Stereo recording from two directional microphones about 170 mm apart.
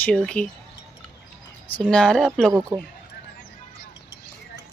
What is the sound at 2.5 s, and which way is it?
Speech, 20° right (ahead or behind).